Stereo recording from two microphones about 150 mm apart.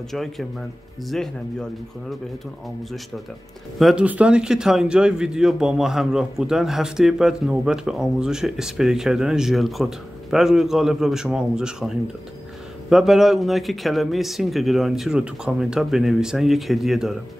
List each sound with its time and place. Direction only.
0.1 s speech: centre (ahead or behind)
3.8 s speech: 10° right (ahead or behind)